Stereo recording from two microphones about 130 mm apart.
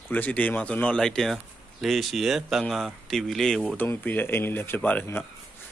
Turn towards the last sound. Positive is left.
turn(degrees=15)  # may be behind; listen again after turning